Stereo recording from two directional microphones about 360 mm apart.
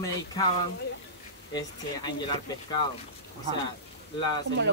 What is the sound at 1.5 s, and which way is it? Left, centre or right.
A man's voice, centre.